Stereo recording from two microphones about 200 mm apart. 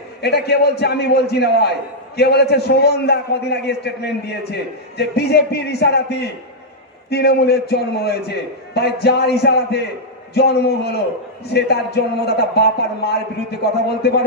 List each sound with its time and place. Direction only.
0.2 s a man's voice: 55° left (ahead or behind)